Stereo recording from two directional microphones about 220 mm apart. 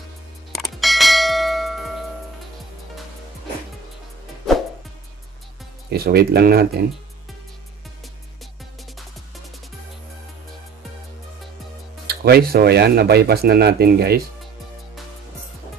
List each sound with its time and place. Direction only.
0.5 s bell: centre (ahead or behind)
5.9 s speech: 45° right (ahead or behind)
12.1 s speech: 45° right (ahead or behind)